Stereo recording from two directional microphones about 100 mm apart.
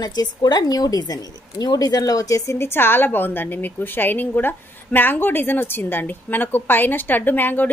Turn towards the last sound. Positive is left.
turn(degrees=20)  # may be behind; listen again after turning